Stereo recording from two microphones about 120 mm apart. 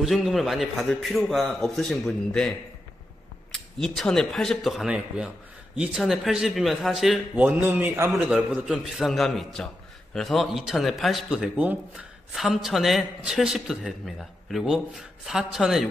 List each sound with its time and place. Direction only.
0.0 s a man's voice: centre (ahead or behind)
3.5 s a man's voice: 5° left (ahead or behind)
7.3 s a man's voice: 15° right (ahead or behind)
8.3 s a man's voice: 5° right (ahead or behind)